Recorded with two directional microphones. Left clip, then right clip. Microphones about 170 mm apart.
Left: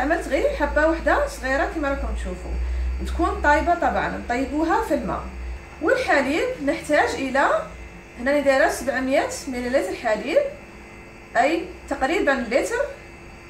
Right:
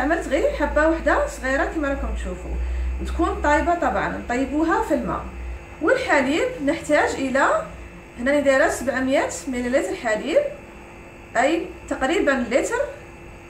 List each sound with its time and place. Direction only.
0.1 s a woman's voice: 5° right (ahead or behind)
3.2 s a woman's voice: centre (ahead or behind)